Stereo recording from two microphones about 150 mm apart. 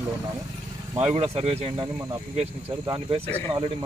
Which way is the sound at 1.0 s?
40° right (ahead or behind).